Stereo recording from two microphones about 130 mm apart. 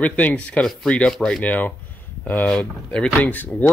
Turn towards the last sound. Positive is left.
turn(degrees=15)  # may be behind; listen again after turning